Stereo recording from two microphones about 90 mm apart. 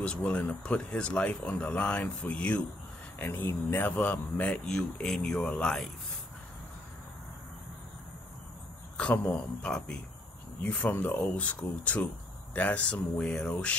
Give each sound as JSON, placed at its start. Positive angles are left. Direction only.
{"t": 0.0, "sound": "speech", "side_deg": 15}
{"t": 8.9, "sound": "speech", "side_deg": 15}